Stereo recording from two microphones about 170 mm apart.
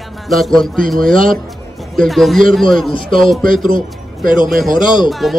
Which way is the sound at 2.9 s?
30° left (ahead or behind).